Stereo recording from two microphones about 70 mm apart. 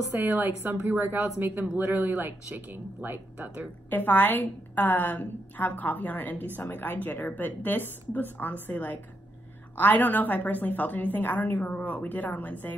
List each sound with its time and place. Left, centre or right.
0.1 s speech: right
3.9 s a woman's voice: left